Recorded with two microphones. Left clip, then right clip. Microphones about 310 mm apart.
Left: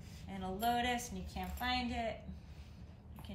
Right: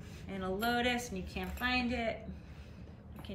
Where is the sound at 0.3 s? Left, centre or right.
Centre.